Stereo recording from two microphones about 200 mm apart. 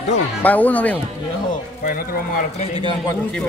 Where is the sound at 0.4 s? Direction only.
10° left (ahead or behind).